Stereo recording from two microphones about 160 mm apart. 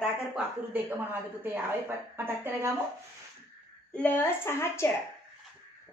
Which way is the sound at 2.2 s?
15° right (ahead or behind).